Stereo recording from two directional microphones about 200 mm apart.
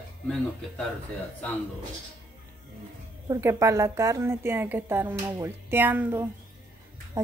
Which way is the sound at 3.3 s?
15° right (ahead or behind).